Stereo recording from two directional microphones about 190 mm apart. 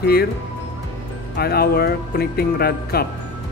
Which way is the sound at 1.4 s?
55° left (ahead or behind).